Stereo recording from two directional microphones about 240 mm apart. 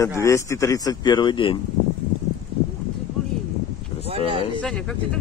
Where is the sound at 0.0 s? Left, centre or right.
Centre.